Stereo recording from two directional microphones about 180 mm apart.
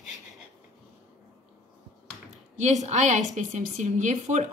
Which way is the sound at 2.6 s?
40° right (ahead or behind).